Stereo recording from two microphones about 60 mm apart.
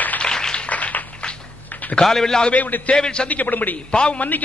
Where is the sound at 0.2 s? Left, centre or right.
Centre.